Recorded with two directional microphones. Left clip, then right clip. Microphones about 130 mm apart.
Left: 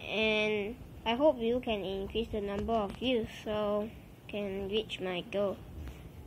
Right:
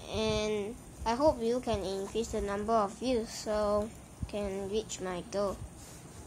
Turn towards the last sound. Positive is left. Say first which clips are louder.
# left 1 dB
turn(degrees=-5)  # may be behind; listen again after turning